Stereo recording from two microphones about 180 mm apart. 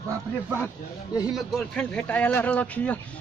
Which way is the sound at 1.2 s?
Centre (ahead or behind).